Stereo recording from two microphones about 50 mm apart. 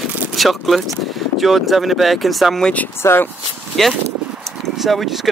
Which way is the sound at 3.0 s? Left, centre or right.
Left.